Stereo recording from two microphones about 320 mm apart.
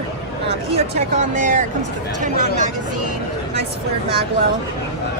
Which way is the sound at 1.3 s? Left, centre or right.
Right.